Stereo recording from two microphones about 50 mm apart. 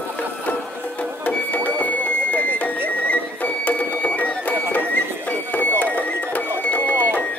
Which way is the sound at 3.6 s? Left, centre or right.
Left.